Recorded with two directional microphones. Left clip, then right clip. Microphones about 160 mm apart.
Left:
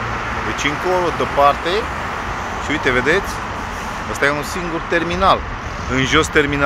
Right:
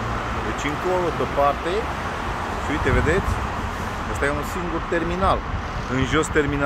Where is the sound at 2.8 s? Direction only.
25° left (ahead or behind).